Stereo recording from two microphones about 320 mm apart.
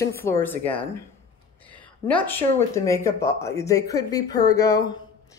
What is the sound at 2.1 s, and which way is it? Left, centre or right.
Speech, centre.